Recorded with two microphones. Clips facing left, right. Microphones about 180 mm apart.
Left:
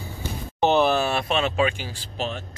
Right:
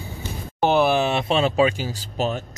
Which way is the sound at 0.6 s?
10° right (ahead or behind).